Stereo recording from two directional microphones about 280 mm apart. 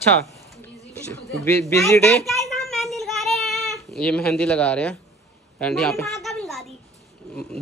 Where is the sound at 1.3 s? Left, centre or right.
Centre.